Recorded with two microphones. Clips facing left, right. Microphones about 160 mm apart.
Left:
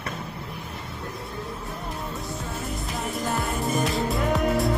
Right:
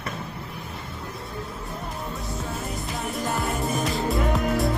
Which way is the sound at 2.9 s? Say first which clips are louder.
Even; centre (ahead or behind).